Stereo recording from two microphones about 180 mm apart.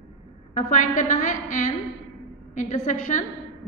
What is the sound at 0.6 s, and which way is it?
A woman's voice, 45° left (ahead or behind).